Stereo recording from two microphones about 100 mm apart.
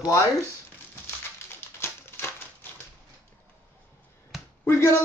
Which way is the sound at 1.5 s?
20° left (ahead or behind).